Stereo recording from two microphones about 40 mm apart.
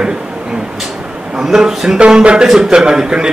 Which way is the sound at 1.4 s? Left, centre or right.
Centre.